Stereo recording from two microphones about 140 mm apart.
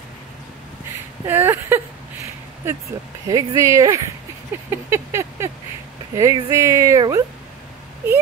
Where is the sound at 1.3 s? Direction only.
15° right (ahead or behind).